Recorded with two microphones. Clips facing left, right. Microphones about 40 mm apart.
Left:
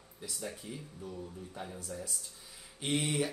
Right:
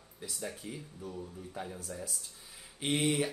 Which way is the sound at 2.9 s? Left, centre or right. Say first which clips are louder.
Right 2 dB; centre.